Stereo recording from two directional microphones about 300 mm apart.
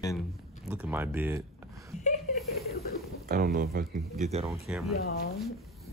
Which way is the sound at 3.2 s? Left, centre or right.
Right.